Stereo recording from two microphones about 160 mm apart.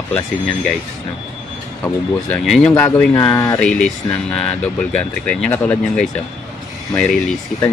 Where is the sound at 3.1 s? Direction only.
15° left (ahead or behind).